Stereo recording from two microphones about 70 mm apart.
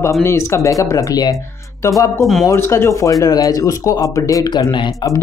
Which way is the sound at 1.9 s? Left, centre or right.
Left.